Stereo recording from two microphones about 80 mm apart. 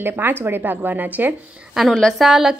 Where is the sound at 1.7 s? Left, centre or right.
Centre.